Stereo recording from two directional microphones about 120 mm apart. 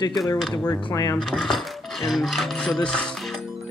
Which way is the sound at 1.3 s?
5° left (ahead or behind).